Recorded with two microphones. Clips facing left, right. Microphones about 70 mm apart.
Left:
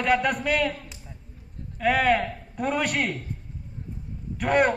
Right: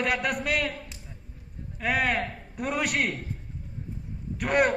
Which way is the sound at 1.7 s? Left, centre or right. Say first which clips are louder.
Left 5 dB; centre.